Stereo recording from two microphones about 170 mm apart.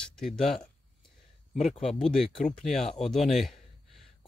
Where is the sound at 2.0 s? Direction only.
Centre (ahead or behind).